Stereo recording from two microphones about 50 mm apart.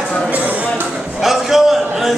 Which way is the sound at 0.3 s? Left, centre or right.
Right.